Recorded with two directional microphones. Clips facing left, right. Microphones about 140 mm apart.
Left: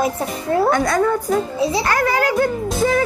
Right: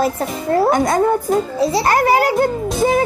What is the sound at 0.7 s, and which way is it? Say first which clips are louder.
Speech: right 2 dB; 20° right (ahead or behind).